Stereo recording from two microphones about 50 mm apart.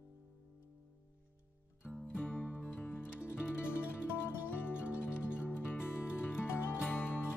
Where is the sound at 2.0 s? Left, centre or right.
Left.